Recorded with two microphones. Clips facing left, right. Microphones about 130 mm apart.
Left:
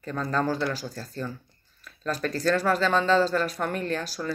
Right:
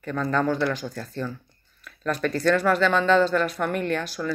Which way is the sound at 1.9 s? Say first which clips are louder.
Right 3 dB; 30° left (ahead or behind).